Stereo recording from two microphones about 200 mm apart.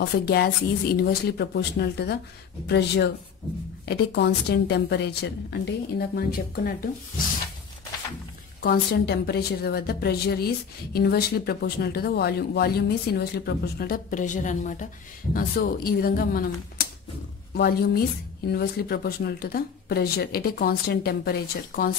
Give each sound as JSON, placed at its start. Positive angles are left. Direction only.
{"t": 0.0, "sound": "a woman's voice", "side_deg": 55}
{"t": 8.5, "sound": "a woman's voice", "side_deg": 55}
{"t": 17.6, "sound": "a woman's voice", "side_deg": 50}